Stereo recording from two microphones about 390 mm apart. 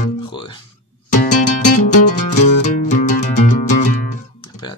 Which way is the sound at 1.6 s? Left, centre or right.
Centre.